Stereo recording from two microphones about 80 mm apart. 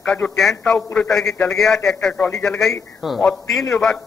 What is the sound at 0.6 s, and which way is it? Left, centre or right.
A man's voice, centre.